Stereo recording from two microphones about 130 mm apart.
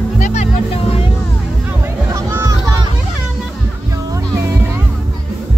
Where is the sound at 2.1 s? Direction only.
25° right (ahead or behind).